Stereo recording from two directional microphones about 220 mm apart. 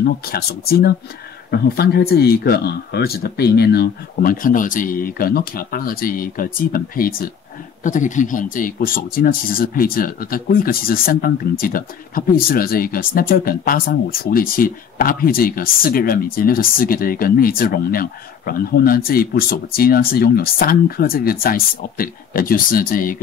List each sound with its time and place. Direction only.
0.0 s speech: 45° left (ahead or behind)